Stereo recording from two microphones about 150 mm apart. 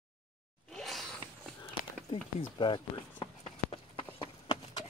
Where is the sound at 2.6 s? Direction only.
35° left (ahead or behind).